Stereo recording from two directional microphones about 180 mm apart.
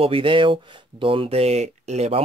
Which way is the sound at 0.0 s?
30° right (ahead or behind).